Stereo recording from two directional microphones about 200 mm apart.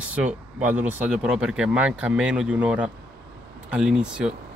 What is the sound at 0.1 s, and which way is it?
Speech, 5° right (ahead or behind).